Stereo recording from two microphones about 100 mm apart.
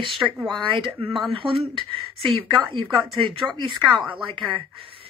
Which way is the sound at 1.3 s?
60° right (ahead or behind).